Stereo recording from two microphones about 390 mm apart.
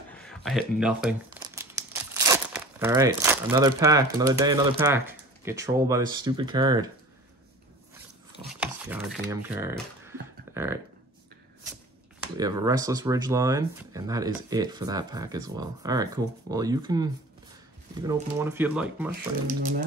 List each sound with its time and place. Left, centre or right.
0.1 s speech: centre
8.5 s chopping: centre
12.4 s speech: centre
19.4 s speech: right